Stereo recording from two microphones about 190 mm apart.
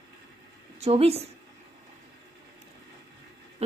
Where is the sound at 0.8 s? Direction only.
30° right (ahead or behind).